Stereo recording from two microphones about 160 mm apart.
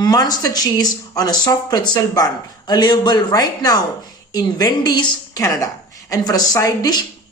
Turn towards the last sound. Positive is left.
turn(degrees=25)  # may be behind; listen again after turning